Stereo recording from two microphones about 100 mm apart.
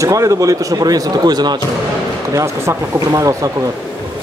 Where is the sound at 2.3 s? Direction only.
35° right (ahead or behind).